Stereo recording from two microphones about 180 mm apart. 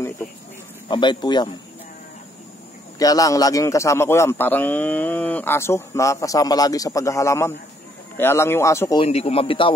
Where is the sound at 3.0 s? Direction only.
20° left (ahead or behind).